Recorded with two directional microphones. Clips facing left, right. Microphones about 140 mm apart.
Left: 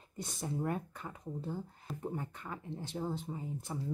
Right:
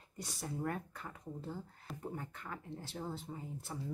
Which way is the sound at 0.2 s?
20° left (ahead or behind).